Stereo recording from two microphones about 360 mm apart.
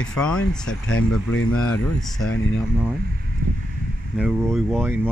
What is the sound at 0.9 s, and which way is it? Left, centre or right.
Speech, left.